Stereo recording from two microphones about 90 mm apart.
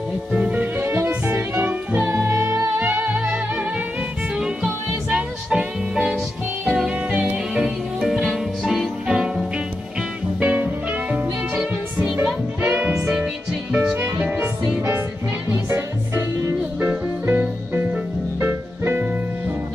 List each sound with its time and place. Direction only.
0.3 s music: 15° right (ahead or behind)
2.1 s music: 30° right (ahead or behind)
2.8 s music: 20° right (ahead or behind)
5.1 s music: 10° right (ahead or behind)
7.5 s music: 5° right (ahead or behind)
10.4 s music: 15° right (ahead or behind)
15.5 s music: 25° right (ahead or behind)